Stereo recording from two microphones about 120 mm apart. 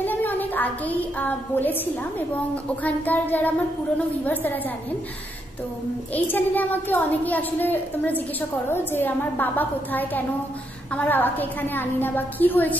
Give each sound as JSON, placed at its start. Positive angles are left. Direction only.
{"t": 0.0, "sound": "a child's voice", "side_deg": 15}
{"t": 6.1, "sound": "a child's voice", "side_deg": 15}